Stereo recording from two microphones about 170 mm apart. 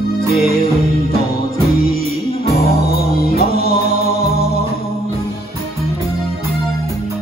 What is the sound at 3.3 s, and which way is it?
Music, 65° left (ahead or behind).